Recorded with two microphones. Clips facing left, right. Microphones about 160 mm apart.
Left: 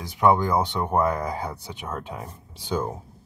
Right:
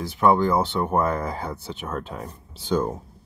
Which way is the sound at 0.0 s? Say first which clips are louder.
Right 1 dB; 15° left (ahead or behind).